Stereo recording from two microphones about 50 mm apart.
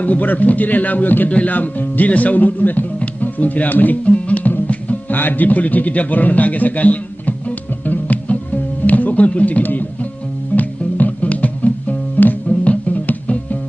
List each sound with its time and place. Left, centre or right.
0.0 s speech: left
7.8 s music: left
8.8 s speech: left
10.5 s music: left